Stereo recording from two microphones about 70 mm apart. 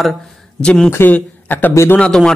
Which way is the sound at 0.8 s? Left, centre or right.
Left.